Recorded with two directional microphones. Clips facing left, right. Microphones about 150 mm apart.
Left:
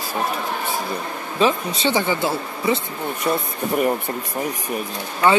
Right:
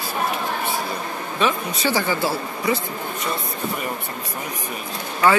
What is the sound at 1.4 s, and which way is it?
Speech, 25° left (ahead or behind).